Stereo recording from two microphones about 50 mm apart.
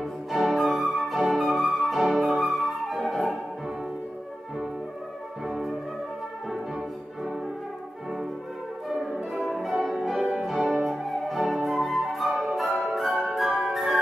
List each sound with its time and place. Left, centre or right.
0.0 s music: centre
0.9 s flute: centre
5.4 s music: centre
9.3 s music: centre
10.1 s music: centre
10.4 s music: centre
11.6 s flute: centre
12.9 s music: centre